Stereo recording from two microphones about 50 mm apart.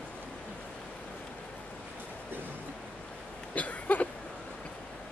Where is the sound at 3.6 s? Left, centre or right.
Left.